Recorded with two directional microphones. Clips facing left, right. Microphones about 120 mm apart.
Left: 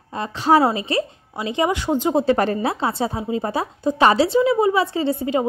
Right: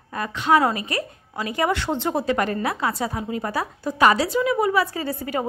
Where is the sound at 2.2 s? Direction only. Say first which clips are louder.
Left 4 dB; 30° left (ahead or behind).